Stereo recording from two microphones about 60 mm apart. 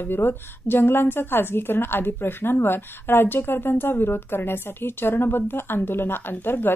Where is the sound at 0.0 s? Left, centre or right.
Left.